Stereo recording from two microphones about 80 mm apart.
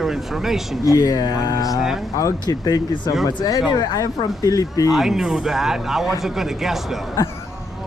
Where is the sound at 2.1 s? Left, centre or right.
Left.